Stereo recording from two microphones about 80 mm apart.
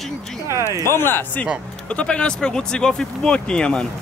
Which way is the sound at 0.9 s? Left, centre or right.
Left.